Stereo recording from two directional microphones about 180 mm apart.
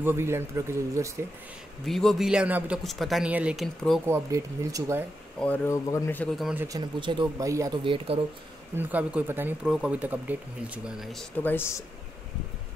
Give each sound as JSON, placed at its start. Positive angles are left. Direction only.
{"t": 0.0, "sound": "speech", "side_deg": -15}
{"t": 1.9, "sound": "a man's voice", "side_deg": 0}
{"t": 4.0, "sound": "speech", "side_deg": -15}
{"t": 5.4, "sound": "a man's voice", "side_deg": 10}
{"t": 6.3, "sound": "a man's voice", "side_deg": 0}
{"t": 7.0, "sound": "speech", "side_deg": -25}
{"t": 8.7, "sound": "speech", "side_deg": -10}